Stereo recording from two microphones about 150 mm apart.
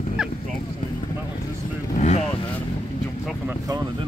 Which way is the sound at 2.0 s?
50° left (ahead or behind).